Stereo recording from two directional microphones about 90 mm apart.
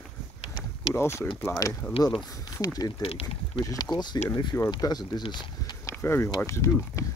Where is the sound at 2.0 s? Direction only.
45° left (ahead or behind).